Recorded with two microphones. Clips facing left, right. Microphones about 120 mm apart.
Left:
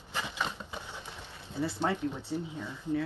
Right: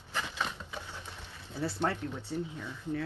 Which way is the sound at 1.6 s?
15° left (ahead or behind).